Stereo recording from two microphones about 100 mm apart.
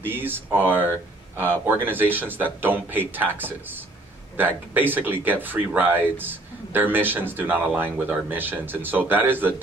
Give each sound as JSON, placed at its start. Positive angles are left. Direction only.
{"t": 0.1, "sound": "speech", "side_deg": -20}